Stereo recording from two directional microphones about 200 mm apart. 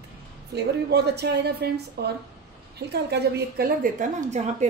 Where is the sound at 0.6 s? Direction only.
55° right (ahead or behind).